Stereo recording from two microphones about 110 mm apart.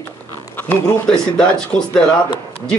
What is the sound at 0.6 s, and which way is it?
Speech, 20° left (ahead or behind).